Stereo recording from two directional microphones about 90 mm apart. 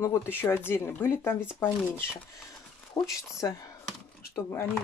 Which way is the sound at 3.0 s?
45° left (ahead or behind).